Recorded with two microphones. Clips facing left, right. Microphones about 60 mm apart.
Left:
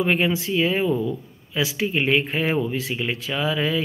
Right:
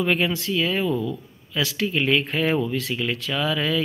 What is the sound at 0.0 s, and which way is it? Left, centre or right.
Speech, centre.